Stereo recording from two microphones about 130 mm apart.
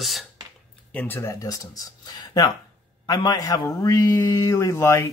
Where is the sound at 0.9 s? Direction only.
15° left (ahead or behind).